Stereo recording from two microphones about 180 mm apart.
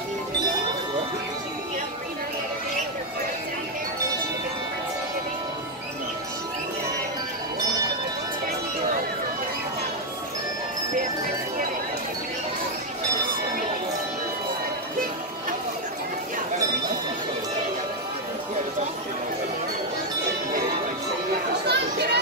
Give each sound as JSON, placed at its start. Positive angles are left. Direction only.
{"t": 21.6, "sound": "chatter", "side_deg": -65}